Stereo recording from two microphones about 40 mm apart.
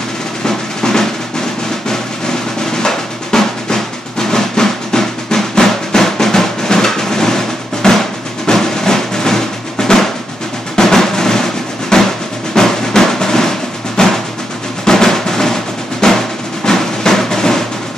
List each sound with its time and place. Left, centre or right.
0.5 s drum: centre
2.8 s drum: centre
14.0 s percussion: centre
14.9 s drum: centre
16.6 s a sound: centre